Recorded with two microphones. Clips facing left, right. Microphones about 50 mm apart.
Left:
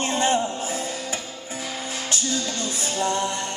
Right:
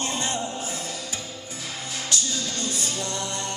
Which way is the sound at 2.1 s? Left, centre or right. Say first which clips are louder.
Left 2 dB; left.